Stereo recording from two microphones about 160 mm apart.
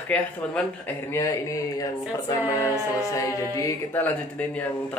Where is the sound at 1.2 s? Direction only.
20° left (ahead or behind).